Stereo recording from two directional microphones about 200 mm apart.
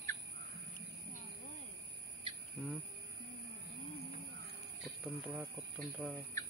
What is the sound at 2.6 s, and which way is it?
Speech, centre (ahead or behind).